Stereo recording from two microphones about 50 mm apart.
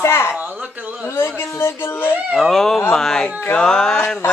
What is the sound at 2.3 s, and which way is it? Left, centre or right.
A woman's voice, centre.